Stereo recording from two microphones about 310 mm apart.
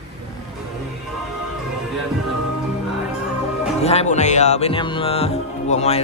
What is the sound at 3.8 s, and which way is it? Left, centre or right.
Speech, centre.